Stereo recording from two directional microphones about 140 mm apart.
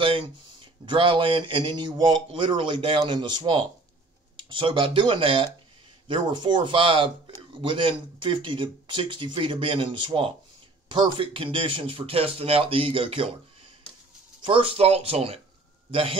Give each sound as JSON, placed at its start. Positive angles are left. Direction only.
{"t": 0.0, "sound": "speech", "side_deg": -40}
{"t": 14.4, "sound": "speech", "side_deg": -40}